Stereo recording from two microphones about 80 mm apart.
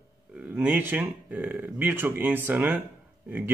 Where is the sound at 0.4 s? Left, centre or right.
Right.